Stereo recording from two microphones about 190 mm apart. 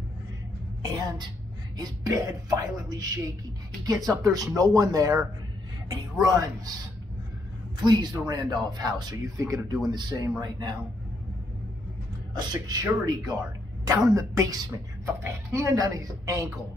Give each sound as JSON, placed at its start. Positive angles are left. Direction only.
{"t": 0.9, "sound": "speech", "side_deg": -20}
{"t": 6.2, "sound": "speech", "side_deg": -20}
{"t": 7.8, "sound": "speech", "side_deg": -20}
{"t": 12.4, "sound": "a woman's voice", "side_deg": -20}